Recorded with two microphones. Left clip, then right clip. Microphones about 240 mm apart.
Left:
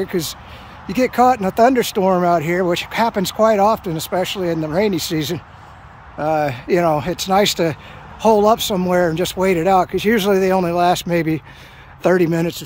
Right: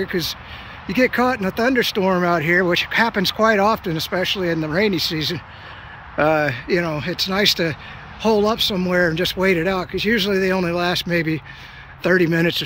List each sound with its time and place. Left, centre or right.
0.0 s speech: centre